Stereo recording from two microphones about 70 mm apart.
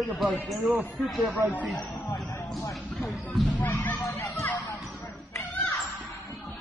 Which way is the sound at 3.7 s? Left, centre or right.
Left.